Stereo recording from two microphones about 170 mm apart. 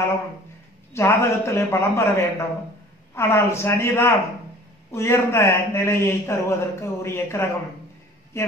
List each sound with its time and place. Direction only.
0.9 s speech: 15° left (ahead or behind)